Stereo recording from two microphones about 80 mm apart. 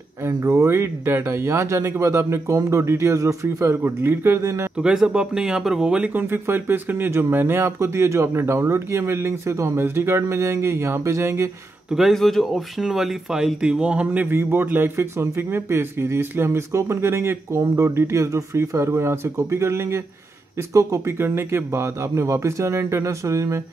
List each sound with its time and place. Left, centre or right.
0.2 s speech: right
4.7 s speech: centre
6.2 s speech: right
11.9 s speech: centre
14.2 s speech: right